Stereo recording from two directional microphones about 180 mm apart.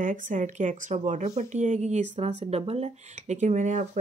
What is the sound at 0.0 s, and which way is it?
Speech, 45° right (ahead or behind).